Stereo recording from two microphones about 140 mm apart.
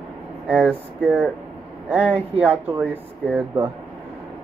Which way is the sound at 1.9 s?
10° right (ahead or behind).